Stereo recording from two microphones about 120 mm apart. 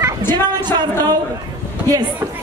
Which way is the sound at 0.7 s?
35° right (ahead or behind).